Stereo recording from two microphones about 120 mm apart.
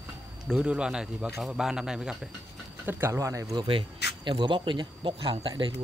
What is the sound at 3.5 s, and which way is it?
Speech, 45° right (ahead or behind).